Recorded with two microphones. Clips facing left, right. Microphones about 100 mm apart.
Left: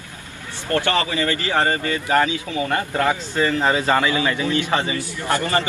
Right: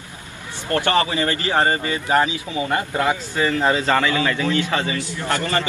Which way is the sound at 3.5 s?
10° left (ahead or behind).